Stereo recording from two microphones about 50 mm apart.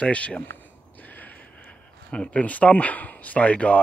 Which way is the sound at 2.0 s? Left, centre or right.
Left.